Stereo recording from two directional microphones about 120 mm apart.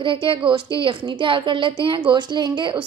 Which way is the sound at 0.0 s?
45° right (ahead or behind).